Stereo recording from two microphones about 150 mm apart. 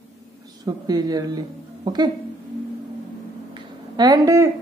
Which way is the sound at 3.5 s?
25° right (ahead or behind).